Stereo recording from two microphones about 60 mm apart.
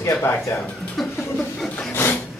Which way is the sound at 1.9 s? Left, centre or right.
Left.